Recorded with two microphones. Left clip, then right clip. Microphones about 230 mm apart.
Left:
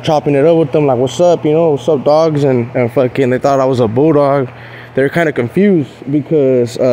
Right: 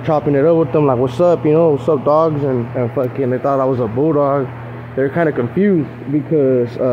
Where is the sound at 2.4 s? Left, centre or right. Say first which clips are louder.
Left 6 dB; left.